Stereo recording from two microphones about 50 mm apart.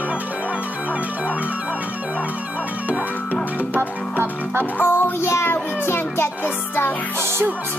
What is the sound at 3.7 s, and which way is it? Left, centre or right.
Music, right.